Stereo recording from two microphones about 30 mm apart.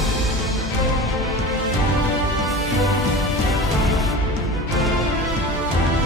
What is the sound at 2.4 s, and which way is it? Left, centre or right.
Music, centre.